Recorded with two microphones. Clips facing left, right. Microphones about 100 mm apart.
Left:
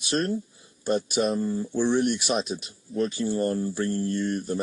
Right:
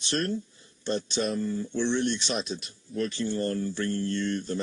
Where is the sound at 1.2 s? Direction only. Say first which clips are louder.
Left 4 dB; 30° left (ahead or behind).